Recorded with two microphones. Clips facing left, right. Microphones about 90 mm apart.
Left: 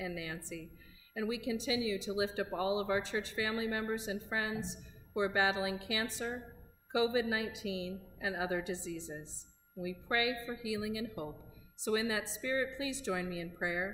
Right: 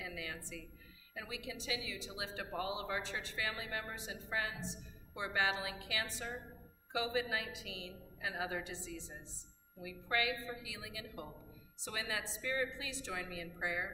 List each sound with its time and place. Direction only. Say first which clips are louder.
0.0 s a woman's voice: left 5 dB; 20° left (ahead or behind)
9.8 s speech: left 3 dB; 20° left (ahead or behind)